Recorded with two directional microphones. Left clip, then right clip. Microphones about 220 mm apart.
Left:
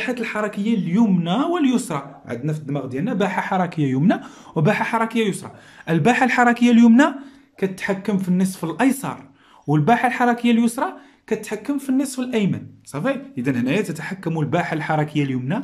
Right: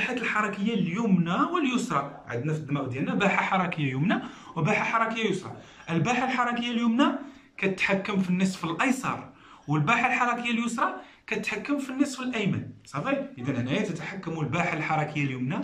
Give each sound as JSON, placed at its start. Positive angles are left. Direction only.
{"t": 0.0, "sound": "speech", "side_deg": 40}
{"t": 7.6, "sound": "speech", "side_deg": 35}